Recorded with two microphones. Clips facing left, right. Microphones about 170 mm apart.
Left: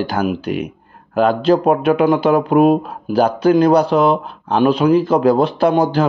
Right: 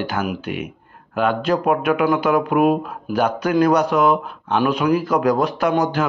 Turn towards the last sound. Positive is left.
turn(degrees=30)  # may be behind; listen again after turning